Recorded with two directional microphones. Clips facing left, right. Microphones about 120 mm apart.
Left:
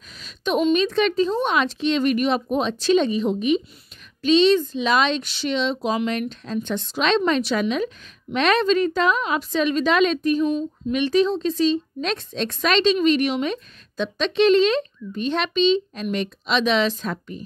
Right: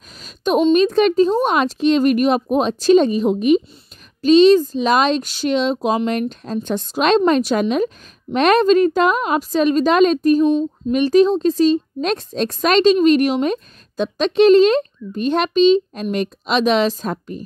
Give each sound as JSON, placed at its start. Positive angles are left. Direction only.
{"t": 0.2, "sound": "speech", "side_deg": -40}